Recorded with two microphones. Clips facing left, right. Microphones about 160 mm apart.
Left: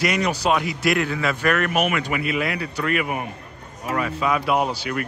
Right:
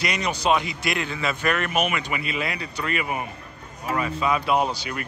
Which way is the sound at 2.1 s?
60° left (ahead or behind).